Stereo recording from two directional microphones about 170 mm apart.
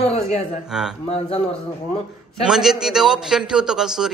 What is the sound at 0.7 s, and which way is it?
Speech, 5° right (ahead or behind).